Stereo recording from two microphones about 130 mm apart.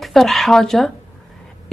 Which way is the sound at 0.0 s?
Centre (ahead or behind).